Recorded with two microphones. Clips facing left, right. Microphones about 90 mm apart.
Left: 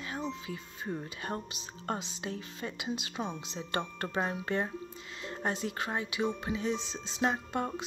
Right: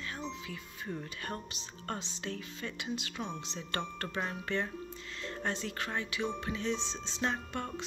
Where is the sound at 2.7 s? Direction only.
20° left (ahead or behind).